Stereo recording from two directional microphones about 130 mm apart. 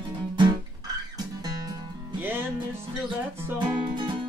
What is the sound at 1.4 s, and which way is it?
Music, 30° right (ahead or behind).